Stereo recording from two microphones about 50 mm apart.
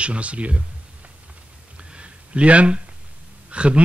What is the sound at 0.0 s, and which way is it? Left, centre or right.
Speech, right.